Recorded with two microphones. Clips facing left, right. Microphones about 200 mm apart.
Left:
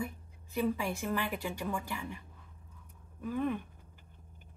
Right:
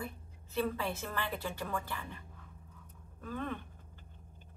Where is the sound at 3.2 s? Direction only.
15° left (ahead or behind).